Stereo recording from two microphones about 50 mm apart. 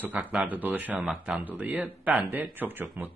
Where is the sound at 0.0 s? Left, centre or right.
Right.